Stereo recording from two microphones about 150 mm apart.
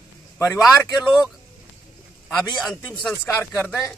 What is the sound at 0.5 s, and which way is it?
Speech, centre (ahead or behind).